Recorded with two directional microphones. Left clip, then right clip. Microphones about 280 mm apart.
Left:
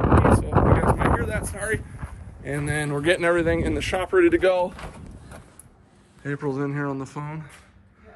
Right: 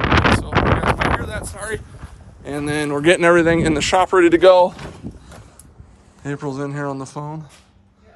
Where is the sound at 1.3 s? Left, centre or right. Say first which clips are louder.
Even; centre.